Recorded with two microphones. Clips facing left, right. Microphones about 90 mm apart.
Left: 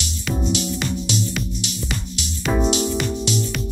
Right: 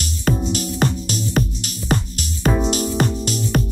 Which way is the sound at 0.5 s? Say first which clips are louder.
Right 2 dB; 45° right (ahead or behind).